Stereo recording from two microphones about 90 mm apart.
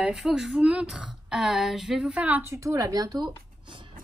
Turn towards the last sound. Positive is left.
turn(degrees=-50)  # may be behind; listen again after turning